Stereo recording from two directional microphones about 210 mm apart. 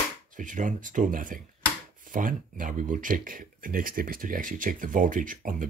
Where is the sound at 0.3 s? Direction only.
40° right (ahead or behind).